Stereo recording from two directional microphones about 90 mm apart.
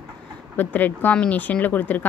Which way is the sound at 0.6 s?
20° left (ahead or behind).